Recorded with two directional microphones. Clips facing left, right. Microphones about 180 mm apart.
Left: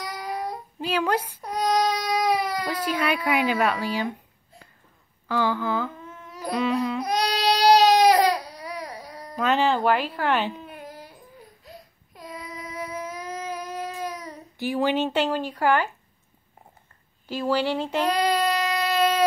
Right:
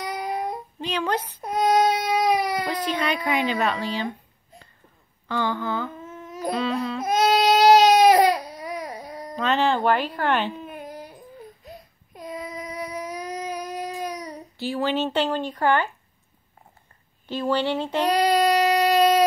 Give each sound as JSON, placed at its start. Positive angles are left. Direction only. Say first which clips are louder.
{"t": 0.0, "sound": "child singing", "louder": "right 3 dB", "side_deg": -20}
{"t": 0.7, "sound": "speech", "louder": "left 2 dB", "side_deg": 5}
{"t": 1.4, "sound": "baby cry", "louder": "right 6 dB", "side_deg": -20}
{"t": 2.7, "sound": "a child's voice", "louder": "even", "side_deg": 10}
{"t": 6.0, "sound": "babbling", "louder": "right 4 dB", "side_deg": -20}
{"t": 6.5, "sound": "a sound", "louder": "left 2 dB", "side_deg": 15}
{"t": 7.6, "sound": "baby cry", "louder": "right 1 dB", "side_deg": -20}
{"t": 9.4, "sound": "speech", "louder": "even", "side_deg": 10}
{"t": 10.6, "sound": "baby cry", "louder": "right 4 dB", "side_deg": -20}
{"t": 14.6, "sound": "speech", "louder": "left 1 dB", "side_deg": 15}
{"t": 17.3, "sound": "speech", "louder": "right 1 dB", "side_deg": 5}
{"t": 18.0, "sound": "child singing", "louder": "right 4 dB", "side_deg": -15}